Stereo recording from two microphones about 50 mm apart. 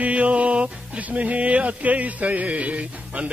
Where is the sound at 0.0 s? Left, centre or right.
Right.